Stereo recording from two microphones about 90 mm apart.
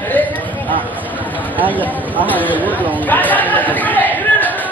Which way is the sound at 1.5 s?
20° right (ahead or behind).